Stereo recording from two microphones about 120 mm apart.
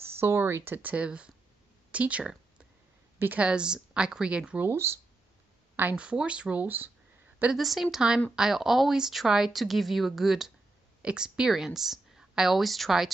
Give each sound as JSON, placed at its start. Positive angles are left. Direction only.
{"t": 0.2, "sound": "speech", "side_deg": -20}
{"t": 5.8, "sound": "speech", "side_deg": -10}
{"t": 7.5, "sound": "speech", "side_deg": 0}